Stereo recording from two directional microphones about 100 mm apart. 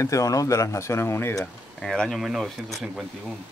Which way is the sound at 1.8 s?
5° left (ahead or behind).